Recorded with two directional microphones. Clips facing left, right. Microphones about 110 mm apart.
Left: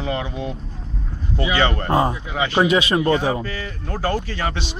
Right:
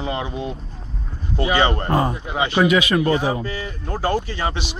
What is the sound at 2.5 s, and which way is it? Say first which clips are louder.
Speech: even; 30° left (ahead or behind).